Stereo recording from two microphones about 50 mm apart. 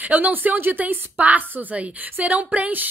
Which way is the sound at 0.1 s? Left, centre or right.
Right.